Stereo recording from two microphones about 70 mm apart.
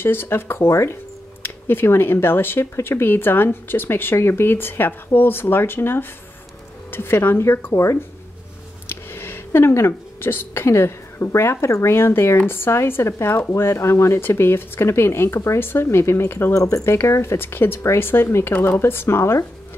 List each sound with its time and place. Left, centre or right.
0.0 s speech: left
8.8 s a sound: left
11.6 s speech: left
16.5 s speech: left